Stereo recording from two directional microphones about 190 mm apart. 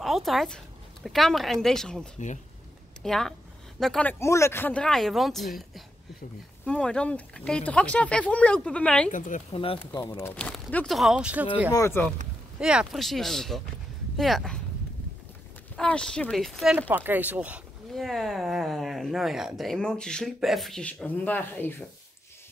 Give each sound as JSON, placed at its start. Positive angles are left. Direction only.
{"t": 0.0, "sound": "speech", "side_deg": 0}
{"t": 9.1, "sound": "speech", "side_deg": 45}
{"t": 9.5, "sound": "speech", "side_deg": 30}
{"t": 9.9, "sound": "speech", "side_deg": 15}
{"t": 11.7, "sound": "speech", "side_deg": 15}
{"t": 12.5, "sound": "speech", "side_deg": -5}
{"t": 15.7, "sound": "speech", "side_deg": 5}
{"t": 16.9, "sound": "speech", "side_deg": -10}